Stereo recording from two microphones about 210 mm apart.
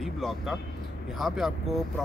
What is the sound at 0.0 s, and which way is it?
Speech, centre (ahead or behind).